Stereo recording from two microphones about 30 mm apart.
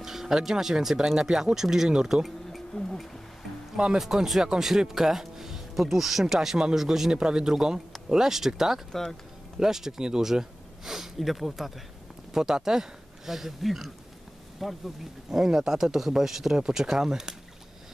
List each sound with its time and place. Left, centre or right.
0.0 s speech: centre
2.8 s speech: left
3.7 s speech: right
4.0 s speech: centre
7.1 s speech: right
8.9 s speech: centre
9.6 s speech: centre
11.1 s speech: centre
12.4 s speech: centre
15.2 s speech: centre